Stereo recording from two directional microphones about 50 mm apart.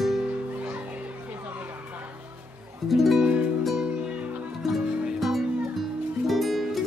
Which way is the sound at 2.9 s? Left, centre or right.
Centre.